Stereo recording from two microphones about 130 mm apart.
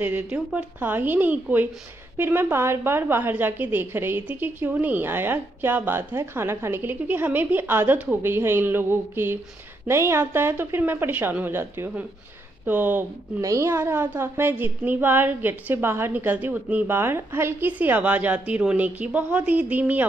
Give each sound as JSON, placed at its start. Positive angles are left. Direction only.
{"t": 0.0, "sound": "a woman's voice", "side_deg": -10}